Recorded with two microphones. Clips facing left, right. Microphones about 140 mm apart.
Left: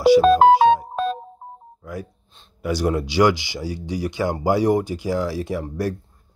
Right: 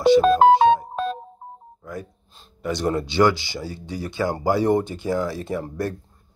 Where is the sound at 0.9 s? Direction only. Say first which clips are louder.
Left 2 dB; 75° left (ahead or behind).